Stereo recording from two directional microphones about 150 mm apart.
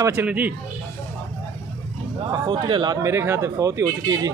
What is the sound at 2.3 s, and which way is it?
Speech, 30° right (ahead or behind).